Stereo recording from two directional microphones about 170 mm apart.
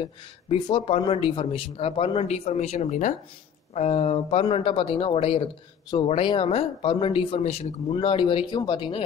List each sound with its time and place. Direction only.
0.0 s speech: 30° left (ahead or behind)